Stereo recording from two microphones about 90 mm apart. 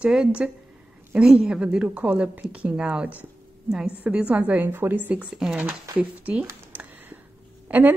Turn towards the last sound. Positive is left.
turn(degrees=-15)  # may be behind; listen again after turning